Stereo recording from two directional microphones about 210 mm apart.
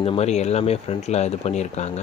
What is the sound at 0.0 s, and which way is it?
Speech, 30° left (ahead or behind).